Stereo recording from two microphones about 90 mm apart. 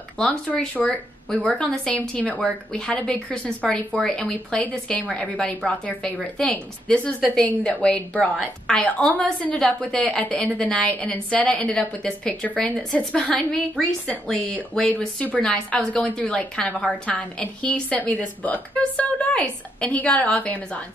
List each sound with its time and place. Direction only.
0.5 s a woman's voice: 15° left (ahead or behind)